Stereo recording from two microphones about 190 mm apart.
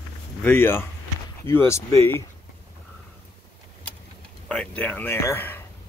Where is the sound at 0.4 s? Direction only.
10° left (ahead or behind).